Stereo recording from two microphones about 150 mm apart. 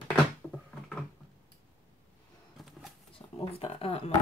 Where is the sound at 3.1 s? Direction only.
40° left (ahead or behind).